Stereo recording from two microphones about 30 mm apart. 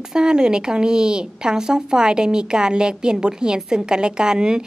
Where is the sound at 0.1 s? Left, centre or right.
Right.